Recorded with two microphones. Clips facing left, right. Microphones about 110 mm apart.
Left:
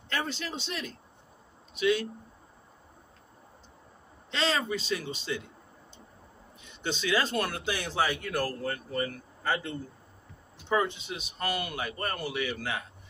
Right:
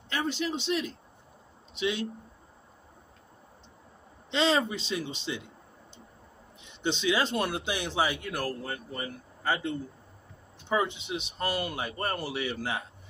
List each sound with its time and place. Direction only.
0.1 s speech: 15° right (ahead or behind)
4.3 s speech: 20° right (ahead or behind)
6.6 s speech: 20° right (ahead or behind)